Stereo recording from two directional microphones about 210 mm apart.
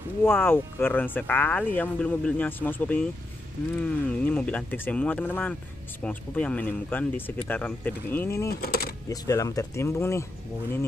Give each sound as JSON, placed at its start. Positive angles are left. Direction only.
{"t": 0.2, "sound": "speech", "side_deg": 10}
{"t": 8.5, "sound": "speech", "side_deg": 45}
{"t": 9.1, "sound": "speech", "side_deg": 15}